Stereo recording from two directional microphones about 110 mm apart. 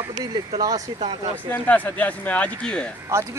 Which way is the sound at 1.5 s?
15° left (ahead or behind).